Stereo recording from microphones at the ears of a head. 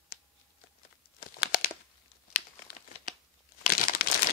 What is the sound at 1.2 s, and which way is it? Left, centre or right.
Crumpling, left.